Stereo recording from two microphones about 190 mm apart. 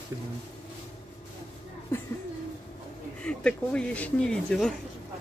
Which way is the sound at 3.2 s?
5° left (ahead or behind).